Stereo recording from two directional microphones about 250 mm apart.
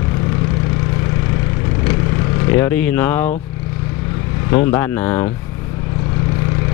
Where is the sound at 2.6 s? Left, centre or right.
Centre.